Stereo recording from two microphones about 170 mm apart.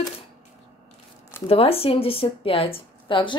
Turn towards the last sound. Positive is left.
turn(degrees=30)  # may be behind; listen again after turning